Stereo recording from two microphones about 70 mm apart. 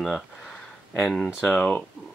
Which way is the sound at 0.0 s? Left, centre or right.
Centre.